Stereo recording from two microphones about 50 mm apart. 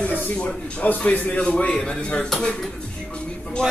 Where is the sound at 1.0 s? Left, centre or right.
Left.